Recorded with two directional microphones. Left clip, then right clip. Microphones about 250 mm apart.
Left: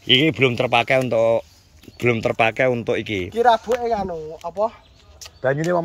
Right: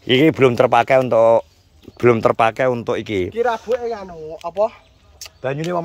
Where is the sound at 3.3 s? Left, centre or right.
Left.